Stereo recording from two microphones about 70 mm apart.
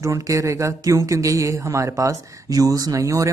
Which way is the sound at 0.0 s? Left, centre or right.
Right.